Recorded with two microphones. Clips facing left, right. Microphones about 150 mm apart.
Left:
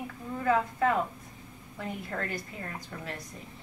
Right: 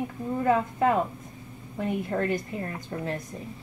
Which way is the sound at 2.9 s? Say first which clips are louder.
Right 9 dB; 35° right (ahead or behind).